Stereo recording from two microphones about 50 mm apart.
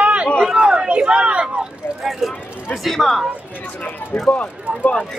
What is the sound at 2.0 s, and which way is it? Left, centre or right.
Speech, centre.